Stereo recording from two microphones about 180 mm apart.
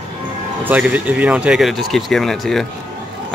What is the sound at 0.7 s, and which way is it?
Speech, 10° right (ahead or behind).